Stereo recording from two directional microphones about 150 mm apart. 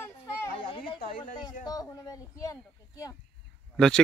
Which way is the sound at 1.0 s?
65° left (ahead or behind).